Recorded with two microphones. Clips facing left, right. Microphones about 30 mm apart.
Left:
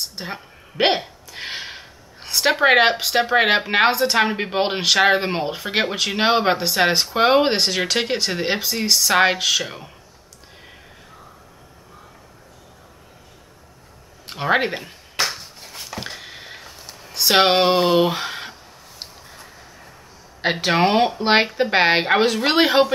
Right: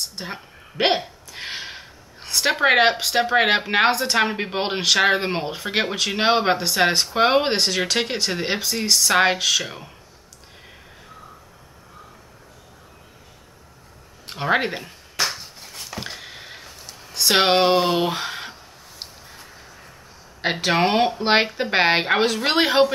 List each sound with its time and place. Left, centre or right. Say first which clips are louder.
0.0 s speech: left 1 dB; centre
14.2 s a sound: left 2 dB; centre
20.4 s speech: left 2 dB; centre